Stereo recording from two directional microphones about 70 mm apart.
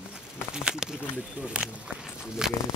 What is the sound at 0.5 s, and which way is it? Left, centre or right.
Speech, centre.